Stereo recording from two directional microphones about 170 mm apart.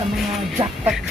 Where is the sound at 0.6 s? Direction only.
30° right (ahead or behind).